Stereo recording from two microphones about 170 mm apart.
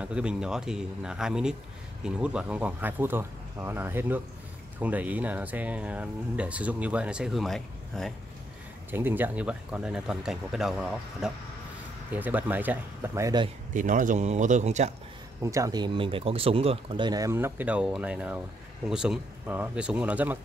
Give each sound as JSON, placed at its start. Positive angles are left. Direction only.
{"t": 0.0, "sound": "speech", "side_deg": -5}
{"t": 8.9, "sound": "speech", "side_deg": -10}
{"t": 13.7, "sound": "speech", "side_deg": -50}
{"t": 15.4, "sound": "speech", "side_deg": -20}